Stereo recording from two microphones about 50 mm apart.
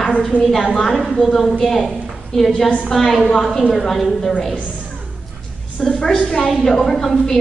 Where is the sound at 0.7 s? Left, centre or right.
Centre.